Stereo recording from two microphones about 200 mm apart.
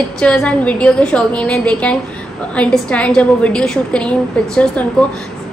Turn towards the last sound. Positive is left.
turn(degrees=5)  # may be behind; listen again after turning